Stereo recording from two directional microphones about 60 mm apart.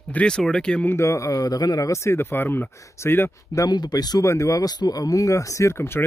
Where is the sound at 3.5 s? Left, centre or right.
Left.